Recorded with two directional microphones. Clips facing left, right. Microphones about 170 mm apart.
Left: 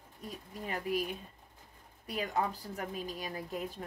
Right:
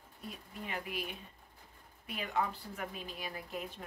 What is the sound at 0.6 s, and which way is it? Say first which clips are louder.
Speech: left 6 dB; 40° left (ahead or behind).